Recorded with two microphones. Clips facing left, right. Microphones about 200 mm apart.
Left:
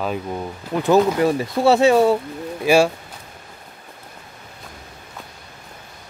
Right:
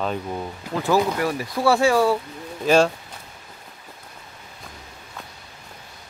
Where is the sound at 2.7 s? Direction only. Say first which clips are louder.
Left 2 dB; 10° left (ahead or behind).